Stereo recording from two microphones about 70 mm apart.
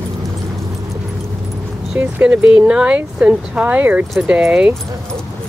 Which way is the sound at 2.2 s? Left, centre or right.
Centre.